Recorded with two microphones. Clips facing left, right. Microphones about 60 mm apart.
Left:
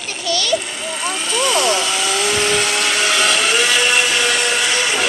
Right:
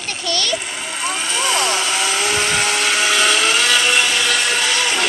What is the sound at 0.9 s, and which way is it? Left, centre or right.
Vehicle, centre.